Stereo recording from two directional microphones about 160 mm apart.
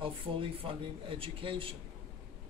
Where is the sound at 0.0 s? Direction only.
35° right (ahead or behind).